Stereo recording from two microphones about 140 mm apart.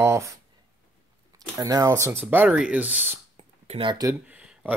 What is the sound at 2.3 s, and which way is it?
Speech, 10° right (ahead or behind).